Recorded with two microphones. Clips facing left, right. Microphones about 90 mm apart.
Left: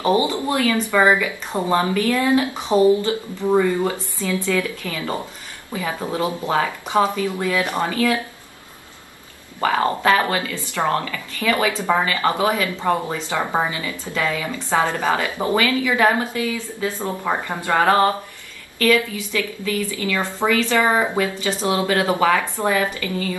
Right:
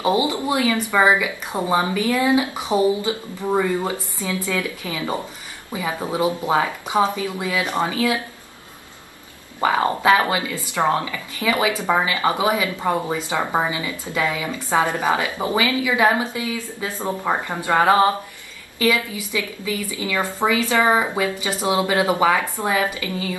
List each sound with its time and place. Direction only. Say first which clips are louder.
0.0 s speech: left 1 dB; 15° right (ahead or behind)
9.6 s speech: even; 15° right (ahead or behind)